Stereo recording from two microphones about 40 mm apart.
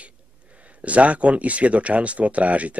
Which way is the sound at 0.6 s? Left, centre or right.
Right.